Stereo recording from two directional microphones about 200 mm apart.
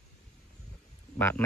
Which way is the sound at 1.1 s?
10° left (ahead or behind).